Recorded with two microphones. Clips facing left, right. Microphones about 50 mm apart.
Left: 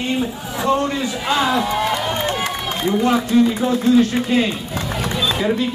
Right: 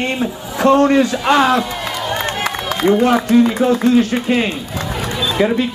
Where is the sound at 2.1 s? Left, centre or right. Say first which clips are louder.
Right 2 dB; right.